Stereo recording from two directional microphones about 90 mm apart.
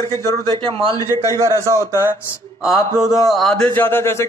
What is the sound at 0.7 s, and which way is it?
Speech, 60° right (ahead or behind).